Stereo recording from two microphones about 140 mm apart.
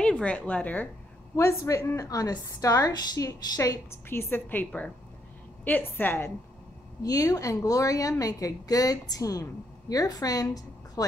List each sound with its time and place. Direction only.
0.0 s a woman's voice: 10° left (ahead or behind)
1.3 s a woman's voice: 20° left (ahead or behind)
7.0 s a woman's voice: 25° left (ahead or behind)